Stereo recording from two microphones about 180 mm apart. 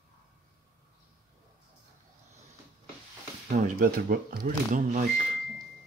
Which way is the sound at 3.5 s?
50° right (ahead or behind).